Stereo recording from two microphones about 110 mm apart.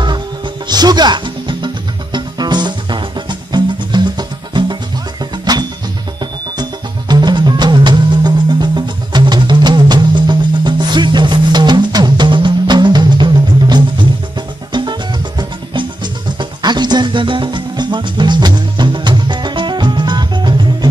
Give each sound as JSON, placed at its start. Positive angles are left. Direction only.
{"t": 0.7, "sound": "music", "side_deg": -40}